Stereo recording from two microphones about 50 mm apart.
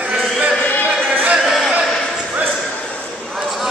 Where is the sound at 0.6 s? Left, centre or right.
Left.